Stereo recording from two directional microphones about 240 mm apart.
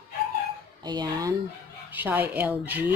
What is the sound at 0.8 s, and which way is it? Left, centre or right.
A woman's voice, centre.